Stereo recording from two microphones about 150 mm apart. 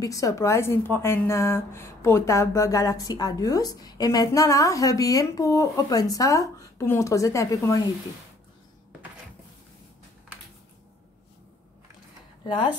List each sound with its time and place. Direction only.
0.0 s a woman's voice: 20° left (ahead or behind)